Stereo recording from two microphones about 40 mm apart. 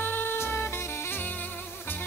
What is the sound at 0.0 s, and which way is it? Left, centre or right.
Music, left.